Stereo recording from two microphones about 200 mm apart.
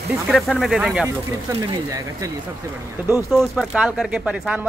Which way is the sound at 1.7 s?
15° right (ahead or behind).